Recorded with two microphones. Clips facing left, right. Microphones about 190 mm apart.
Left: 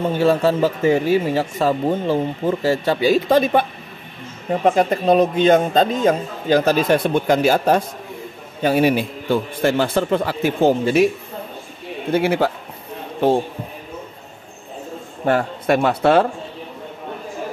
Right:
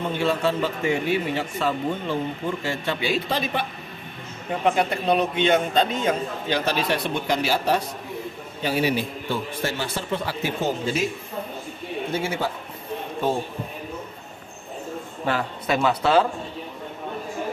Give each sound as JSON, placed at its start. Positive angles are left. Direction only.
{"t": 0.1, "sound": "a man's voice", "side_deg": 40}
{"t": 12.1, "sound": "a man's voice", "side_deg": 60}
{"t": 15.2, "sound": "a man's voice", "side_deg": 55}